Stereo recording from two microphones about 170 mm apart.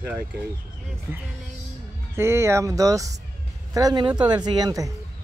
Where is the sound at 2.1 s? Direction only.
15° right (ahead or behind).